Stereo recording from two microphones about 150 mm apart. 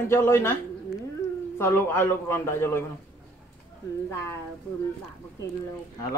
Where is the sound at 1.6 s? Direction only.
15° left (ahead or behind).